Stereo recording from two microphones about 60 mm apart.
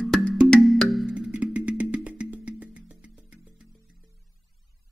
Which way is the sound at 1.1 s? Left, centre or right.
Centre.